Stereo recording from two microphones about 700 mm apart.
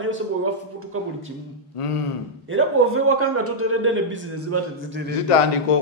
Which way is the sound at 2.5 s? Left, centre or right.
Centre.